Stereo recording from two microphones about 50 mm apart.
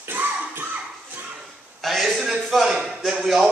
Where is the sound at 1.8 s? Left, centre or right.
Centre.